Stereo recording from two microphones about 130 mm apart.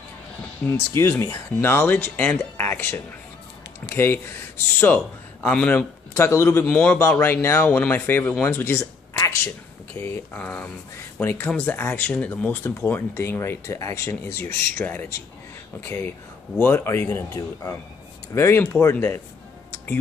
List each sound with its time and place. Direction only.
0.7 s speech: 20° left (ahead or behind)
6.1 s speech: 20° left (ahead or behind)
9.2 s a sound: 25° left (ahead or behind)
9.9 s speech: 15° left (ahead or behind)
16.5 s speech: 20° left (ahead or behind)